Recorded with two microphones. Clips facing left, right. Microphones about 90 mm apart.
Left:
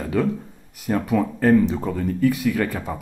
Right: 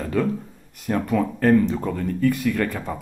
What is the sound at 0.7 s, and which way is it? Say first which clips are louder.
A man's voice: left 1 dB; 5° left (ahead or behind).